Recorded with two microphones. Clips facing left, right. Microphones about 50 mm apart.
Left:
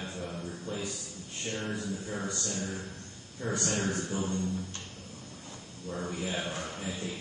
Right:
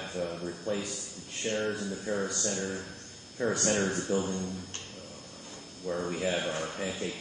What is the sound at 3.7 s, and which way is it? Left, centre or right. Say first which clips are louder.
Speech: right 4 dB; centre.